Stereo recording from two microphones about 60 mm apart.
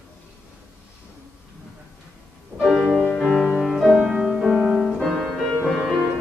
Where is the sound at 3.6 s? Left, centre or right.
Centre.